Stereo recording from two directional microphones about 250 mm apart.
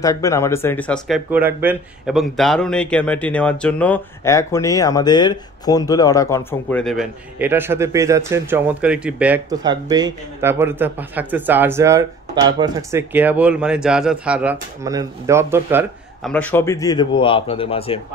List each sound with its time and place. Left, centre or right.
0.0 s speech: centre
16.3 s speech: centre; by 18.0 s left